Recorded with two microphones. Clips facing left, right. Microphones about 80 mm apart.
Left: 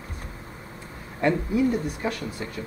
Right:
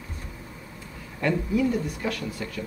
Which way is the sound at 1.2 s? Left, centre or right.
Left.